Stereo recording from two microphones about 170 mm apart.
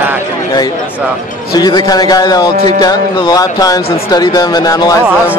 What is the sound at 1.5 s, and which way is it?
Speech, 25° left (ahead or behind).